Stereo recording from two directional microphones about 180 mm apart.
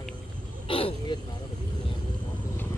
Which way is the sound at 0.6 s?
30° left (ahead or behind).